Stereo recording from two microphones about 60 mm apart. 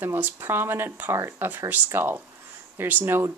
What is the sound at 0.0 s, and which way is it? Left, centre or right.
Speech, right.